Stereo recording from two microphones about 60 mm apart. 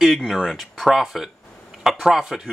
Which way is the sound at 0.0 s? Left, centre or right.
Centre.